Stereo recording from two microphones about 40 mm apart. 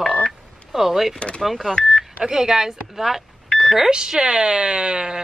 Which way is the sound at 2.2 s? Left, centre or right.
Centre.